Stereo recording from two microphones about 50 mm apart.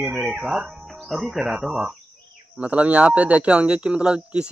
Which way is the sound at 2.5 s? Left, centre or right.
Right.